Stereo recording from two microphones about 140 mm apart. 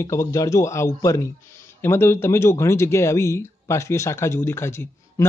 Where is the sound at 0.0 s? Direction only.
20° left (ahead or behind).